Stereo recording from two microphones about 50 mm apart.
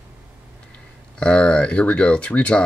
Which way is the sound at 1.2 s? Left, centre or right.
Centre.